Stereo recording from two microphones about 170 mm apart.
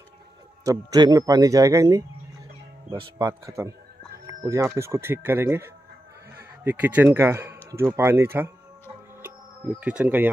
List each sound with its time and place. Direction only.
0.7 s speech: 20° right (ahead or behind)
3.3 s speech: 15° right (ahead or behind)
6.3 s sheep: 10° right (ahead or behind)
7.2 s speech: 15° right (ahead or behind)
9.8 s speech: 10° right (ahead or behind)